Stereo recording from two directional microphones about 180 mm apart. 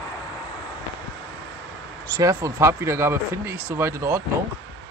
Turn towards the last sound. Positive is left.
turn(degrees=-15)  # may be behind; listen again after turning